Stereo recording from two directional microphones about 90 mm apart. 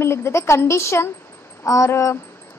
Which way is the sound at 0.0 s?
30° left (ahead or behind).